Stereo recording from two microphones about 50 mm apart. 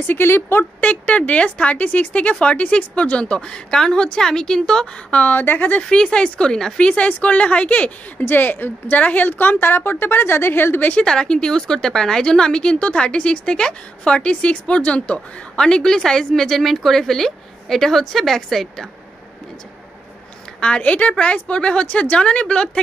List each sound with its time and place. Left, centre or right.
0.0 s a woman's voice: left
0.7 s speech: left
5.3 s speech: left
5.9 s a woman's voice: centre
7.1 s speech: left
8.3 s a woman's voice: left
8.9 s a woman's voice: left
11.1 s a woman's voice: centre
20.6 s speech: left